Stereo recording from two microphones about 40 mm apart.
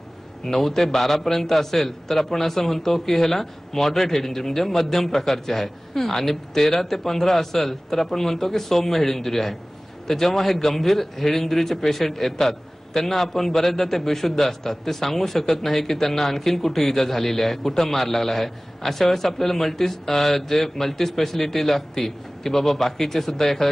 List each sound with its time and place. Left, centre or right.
0.5 s a man's voice: centre